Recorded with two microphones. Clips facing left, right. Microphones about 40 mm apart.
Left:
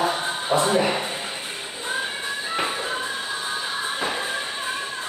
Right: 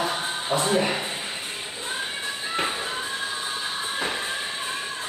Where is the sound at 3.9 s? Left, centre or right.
Centre.